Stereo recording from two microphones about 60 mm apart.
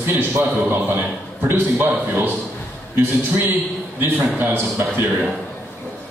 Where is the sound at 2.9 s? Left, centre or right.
Right.